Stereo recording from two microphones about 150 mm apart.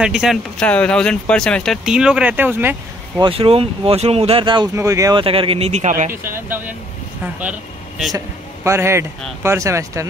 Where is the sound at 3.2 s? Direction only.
40° right (ahead or behind).